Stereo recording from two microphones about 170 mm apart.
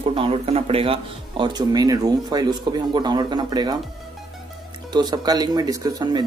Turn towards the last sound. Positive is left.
turn(degrees=-25)  # may be behind; listen again after turning